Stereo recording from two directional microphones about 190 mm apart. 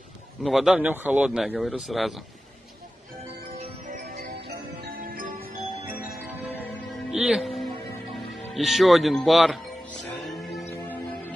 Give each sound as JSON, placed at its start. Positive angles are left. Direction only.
{"t": 0.4, "sound": "speech", "side_deg": 0}
{"t": 3.5, "sound": "music", "side_deg": -30}
{"t": 4.0, "sound": "music", "side_deg": -55}
{"t": 6.0, "sound": "music", "side_deg": 0}
{"t": 8.5, "sound": "speech", "side_deg": 0}
{"t": 10.0, "sound": "music", "side_deg": 0}